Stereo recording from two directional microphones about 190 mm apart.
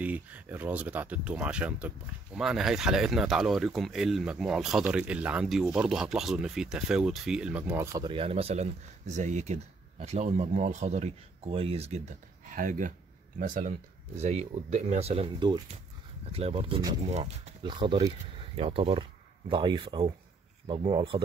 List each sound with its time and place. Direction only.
0.0 s speech: 10° right (ahead or behind); by 12.0 s 30° right (ahead or behind)
12.4 s speech: 45° right (ahead or behind); by 21.2 s 30° right (ahead or behind)